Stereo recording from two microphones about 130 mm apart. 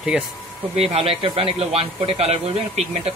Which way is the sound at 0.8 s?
50° right (ahead or behind).